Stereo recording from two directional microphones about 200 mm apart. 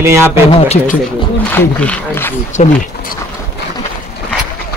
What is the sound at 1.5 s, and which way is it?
Speech, 10° left (ahead or behind).